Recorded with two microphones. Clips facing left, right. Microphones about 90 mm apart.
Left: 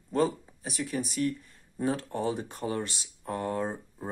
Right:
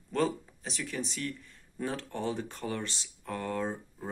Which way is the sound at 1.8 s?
20° left (ahead or behind).